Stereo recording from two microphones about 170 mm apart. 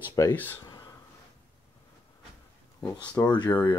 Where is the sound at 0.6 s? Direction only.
25° left (ahead or behind).